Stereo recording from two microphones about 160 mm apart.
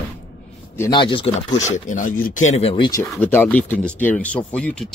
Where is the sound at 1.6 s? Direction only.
50° left (ahead or behind); by 3.0 s 30° left (ahead or behind).